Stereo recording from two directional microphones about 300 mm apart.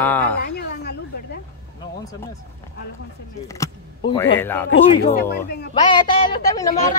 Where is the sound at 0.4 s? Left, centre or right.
Left.